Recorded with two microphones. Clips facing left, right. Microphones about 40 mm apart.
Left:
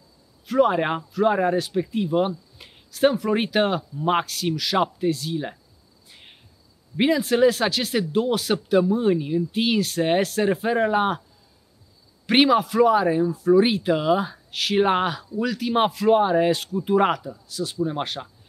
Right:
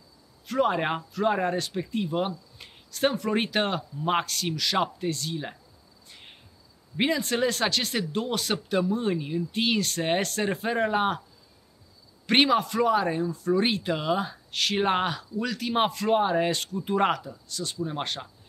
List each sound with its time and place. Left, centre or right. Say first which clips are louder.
0.5 s speech: left 5 dB; centre
6.0 s cricket: left 1 dB; centre
7.0 s speech: left 7 dB; centre
12.3 s speech: left 4 dB; centre